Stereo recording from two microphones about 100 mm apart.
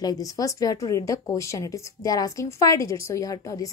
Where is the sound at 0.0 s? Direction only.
40° left (ahead or behind).